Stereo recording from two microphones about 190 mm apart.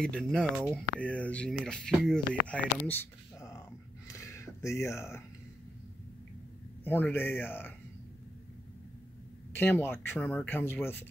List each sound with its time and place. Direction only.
0.0 s speech: 5° left (ahead or behind)
0.9 s speech: 5° left (ahead or behind)
2.9 s a sound: 15° left (ahead or behind)
6.8 s speech: 10° left (ahead or behind)
9.5 s speech: 10° left (ahead or behind)